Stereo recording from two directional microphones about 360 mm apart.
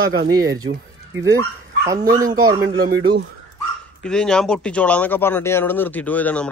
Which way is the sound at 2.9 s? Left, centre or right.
Right.